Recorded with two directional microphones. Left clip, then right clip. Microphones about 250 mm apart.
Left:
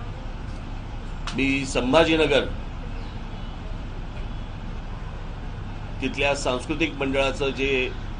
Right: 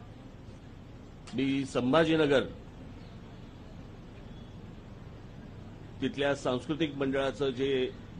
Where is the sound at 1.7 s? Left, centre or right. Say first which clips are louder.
Left 7 dB; right.